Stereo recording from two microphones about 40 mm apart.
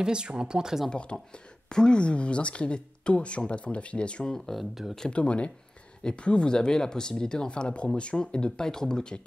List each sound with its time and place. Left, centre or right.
0.0 s speech: right
0.9 s speech: left
4.6 s speech: centre
5.1 s speech: left